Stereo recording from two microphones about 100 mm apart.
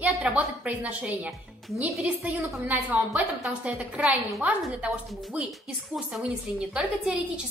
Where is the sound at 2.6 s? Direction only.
15° right (ahead or behind).